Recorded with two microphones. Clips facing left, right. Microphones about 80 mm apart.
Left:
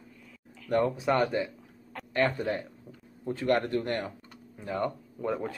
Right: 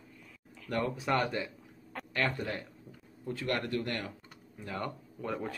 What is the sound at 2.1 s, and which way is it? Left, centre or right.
Speech, left.